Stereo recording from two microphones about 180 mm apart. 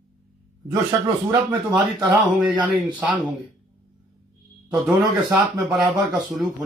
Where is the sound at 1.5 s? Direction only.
20° right (ahead or behind).